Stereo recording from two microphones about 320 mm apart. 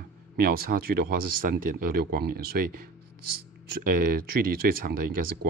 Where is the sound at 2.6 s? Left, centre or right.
Right.